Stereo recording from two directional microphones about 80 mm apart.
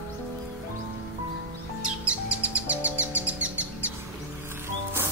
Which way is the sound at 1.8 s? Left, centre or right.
Centre.